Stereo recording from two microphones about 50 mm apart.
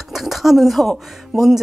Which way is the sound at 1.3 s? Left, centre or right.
Centre.